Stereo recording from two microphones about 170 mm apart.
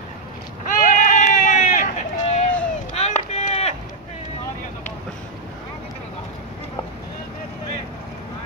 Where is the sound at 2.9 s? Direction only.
40° left (ahead or behind).